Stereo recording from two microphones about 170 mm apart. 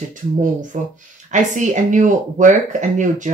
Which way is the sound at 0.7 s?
50° right (ahead or behind).